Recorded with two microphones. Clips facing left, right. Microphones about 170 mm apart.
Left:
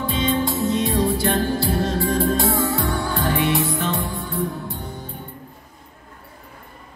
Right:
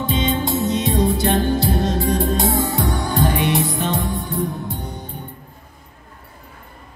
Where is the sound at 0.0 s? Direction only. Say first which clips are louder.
Right 1 dB; 20° right (ahead or behind).